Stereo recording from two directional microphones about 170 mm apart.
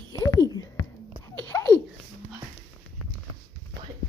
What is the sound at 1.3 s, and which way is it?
Babbling, 15° left (ahead or behind).